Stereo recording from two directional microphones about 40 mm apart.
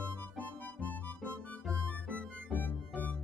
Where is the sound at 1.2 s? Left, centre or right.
Left.